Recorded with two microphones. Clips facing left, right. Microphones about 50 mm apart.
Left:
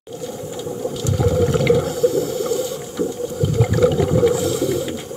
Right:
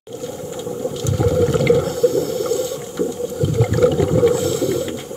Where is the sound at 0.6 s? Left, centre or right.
Centre.